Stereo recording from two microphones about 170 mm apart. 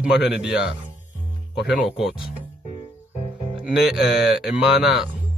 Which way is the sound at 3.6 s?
Centre (ahead or behind).